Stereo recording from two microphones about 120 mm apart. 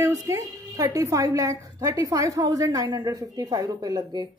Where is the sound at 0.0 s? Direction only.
25° right (ahead or behind).